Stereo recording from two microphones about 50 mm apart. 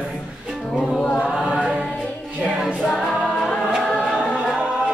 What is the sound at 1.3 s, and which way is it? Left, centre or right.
Choir, centre.